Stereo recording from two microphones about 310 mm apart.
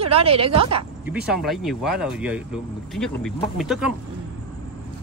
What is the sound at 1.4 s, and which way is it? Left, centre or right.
Speech, centre.